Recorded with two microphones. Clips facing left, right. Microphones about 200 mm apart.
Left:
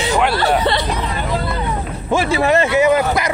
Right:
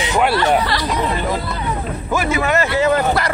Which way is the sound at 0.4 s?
25° left (ahead or behind).